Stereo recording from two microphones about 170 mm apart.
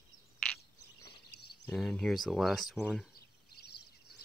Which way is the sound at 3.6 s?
65° left (ahead or behind).